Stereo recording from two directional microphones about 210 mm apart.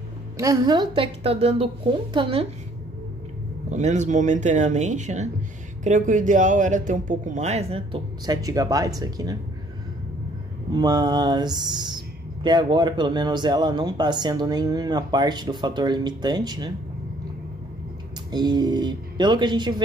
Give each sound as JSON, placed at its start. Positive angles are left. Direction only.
{"t": 0.4, "sound": "speech", "side_deg": -20}
{"t": 3.7, "sound": "speech", "side_deg": -35}
{"t": 10.7, "sound": "speech", "side_deg": -20}
{"t": 18.3, "sound": "speech", "side_deg": -20}